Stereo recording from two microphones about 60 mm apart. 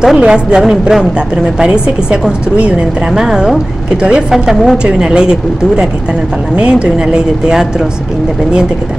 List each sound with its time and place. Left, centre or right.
0.0 s a woman's voice: centre